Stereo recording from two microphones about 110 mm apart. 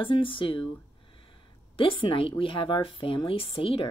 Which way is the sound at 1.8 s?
50° left (ahead or behind).